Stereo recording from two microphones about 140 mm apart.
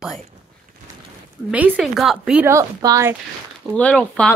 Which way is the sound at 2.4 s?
25° right (ahead or behind).